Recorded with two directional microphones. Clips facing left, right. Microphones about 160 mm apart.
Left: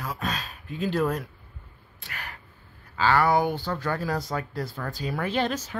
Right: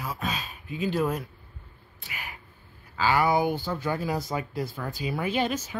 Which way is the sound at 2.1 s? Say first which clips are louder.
Left 1 dB; 5° right (ahead or behind).